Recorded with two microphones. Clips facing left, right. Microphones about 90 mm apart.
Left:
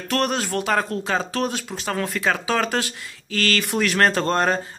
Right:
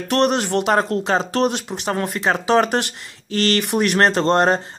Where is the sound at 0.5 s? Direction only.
35° right (ahead or behind).